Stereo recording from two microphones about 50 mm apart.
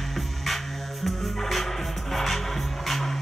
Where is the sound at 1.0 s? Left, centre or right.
Centre.